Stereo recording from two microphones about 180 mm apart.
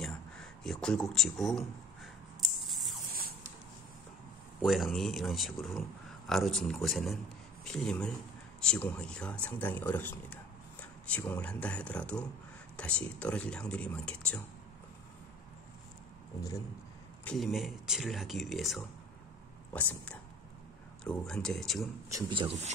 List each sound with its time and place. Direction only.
0.0 s speech: 5° left (ahead or behind)
2.4 s spray: centre (ahead or behind)
3.1 s a sound: 55° right (ahead or behind)
4.6 s speech: centre (ahead or behind)
17.2 s speech: 5° left (ahead or behind)
22.1 s speech: 30° right (ahead or behind)